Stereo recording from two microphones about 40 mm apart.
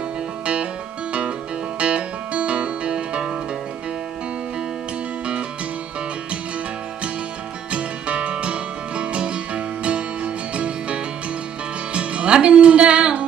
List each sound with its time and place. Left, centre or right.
1.8 s music: right
7.7 s music: right